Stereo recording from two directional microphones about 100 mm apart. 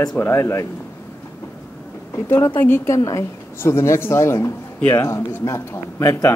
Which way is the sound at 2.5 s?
25° left (ahead or behind).